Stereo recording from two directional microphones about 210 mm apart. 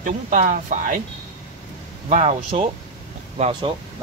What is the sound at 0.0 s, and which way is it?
Speech, 40° right (ahead or behind).